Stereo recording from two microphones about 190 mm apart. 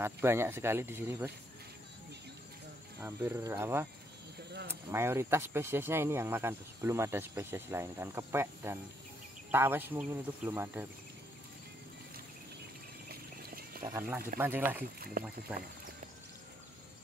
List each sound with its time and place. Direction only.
0.0 s speech: 10° right (ahead or behind)
3.0 s speech: 15° right (ahead or behind)
13.1 s vehicle: 50° right (ahead or behind)
13.8 s speech: 10° right (ahead or behind)